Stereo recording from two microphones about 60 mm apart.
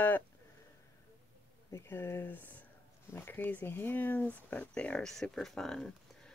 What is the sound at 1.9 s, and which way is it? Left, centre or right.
Speech, left.